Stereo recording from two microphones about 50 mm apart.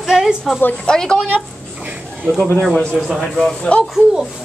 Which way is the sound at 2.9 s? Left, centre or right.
Centre.